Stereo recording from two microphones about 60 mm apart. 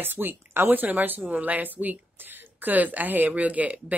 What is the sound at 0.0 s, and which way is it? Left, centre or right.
Speech, right.